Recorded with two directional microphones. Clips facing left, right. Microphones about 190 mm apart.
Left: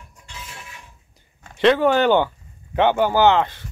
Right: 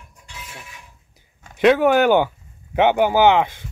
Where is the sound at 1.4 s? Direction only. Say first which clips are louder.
Right 1 dB; 10° right (ahead or behind).